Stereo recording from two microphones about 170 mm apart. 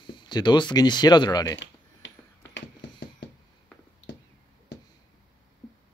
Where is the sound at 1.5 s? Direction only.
90° left.